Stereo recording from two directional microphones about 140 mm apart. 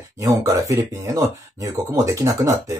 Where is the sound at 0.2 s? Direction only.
25° right (ahead or behind).